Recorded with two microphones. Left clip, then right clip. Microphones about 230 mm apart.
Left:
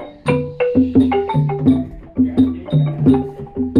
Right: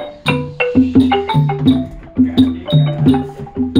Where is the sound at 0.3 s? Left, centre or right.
Right.